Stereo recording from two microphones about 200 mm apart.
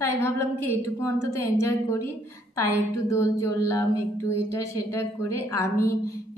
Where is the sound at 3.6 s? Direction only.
15° left (ahead or behind).